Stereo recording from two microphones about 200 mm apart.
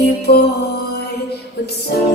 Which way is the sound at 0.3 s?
55° left (ahead or behind).